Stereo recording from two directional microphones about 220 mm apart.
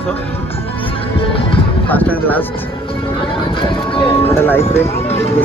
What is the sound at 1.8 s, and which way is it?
Speech, 5° left (ahead or behind).